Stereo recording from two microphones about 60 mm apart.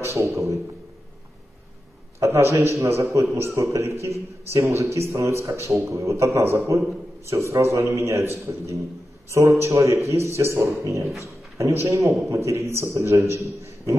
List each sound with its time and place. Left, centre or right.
0.0 s a man's voice: right
2.1 s a man's voice: right